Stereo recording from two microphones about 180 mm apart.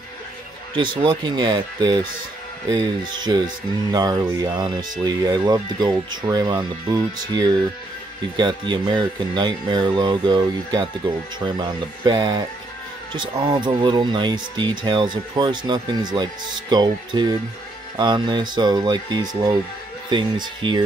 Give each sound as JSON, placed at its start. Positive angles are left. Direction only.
{"t": 0.7, "sound": "speech", "side_deg": -25}